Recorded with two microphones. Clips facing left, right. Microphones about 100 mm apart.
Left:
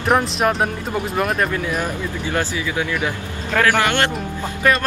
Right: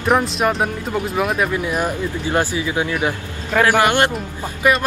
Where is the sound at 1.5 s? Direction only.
15° right (ahead or behind).